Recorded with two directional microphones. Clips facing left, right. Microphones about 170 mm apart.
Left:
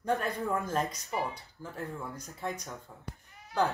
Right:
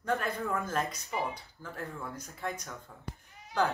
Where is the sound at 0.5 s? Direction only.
15° left (ahead or behind).